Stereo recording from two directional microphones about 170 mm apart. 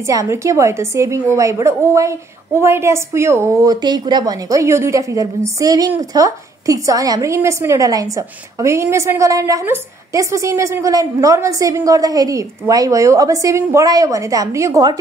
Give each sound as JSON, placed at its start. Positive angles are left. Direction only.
{"t": 0.0, "sound": "a woman's voice", "side_deg": -20}